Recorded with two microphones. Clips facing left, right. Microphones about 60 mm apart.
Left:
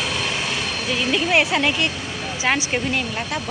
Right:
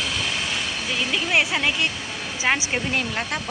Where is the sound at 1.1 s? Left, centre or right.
Centre.